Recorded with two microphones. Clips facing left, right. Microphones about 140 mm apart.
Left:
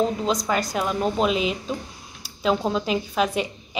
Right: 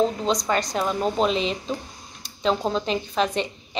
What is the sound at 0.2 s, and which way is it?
A woman's voice, 5° left (ahead or behind).